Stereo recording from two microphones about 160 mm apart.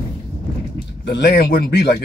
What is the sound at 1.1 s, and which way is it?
Speech, 90° left.